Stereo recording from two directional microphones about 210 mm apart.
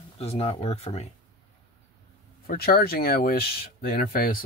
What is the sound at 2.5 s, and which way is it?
Speech, 45° left (ahead or behind).